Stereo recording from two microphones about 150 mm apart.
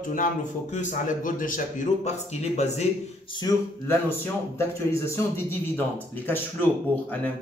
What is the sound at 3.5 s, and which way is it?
A man's voice, 25° left (ahead or behind).